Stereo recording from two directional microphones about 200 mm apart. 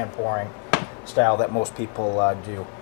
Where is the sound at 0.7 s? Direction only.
20° left (ahead or behind).